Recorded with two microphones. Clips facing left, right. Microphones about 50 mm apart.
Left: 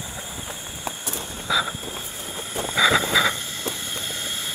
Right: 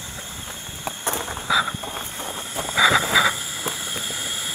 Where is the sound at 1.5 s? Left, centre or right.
Centre.